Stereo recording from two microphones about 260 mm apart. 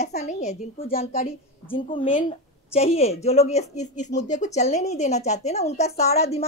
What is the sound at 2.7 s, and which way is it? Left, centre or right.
Speech, left.